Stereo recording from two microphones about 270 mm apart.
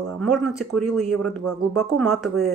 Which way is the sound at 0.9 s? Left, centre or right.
Right.